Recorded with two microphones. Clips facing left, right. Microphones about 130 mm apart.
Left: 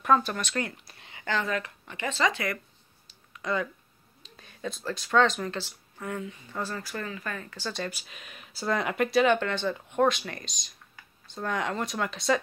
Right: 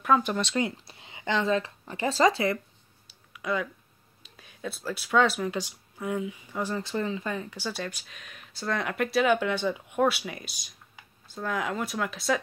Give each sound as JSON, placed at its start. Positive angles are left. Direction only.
{"t": 0.2, "sound": "speech", "side_deg": -20}
{"t": 3.1, "sound": "a sound", "side_deg": -10}
{"t": 4.2, "sound": "speech", "side_deg": -5}